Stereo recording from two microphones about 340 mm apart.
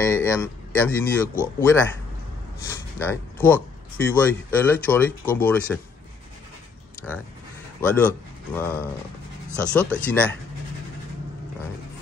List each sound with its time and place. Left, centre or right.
0.0 s a man's voice: centre
3.0 s speech: centre
7.1 s speech: centre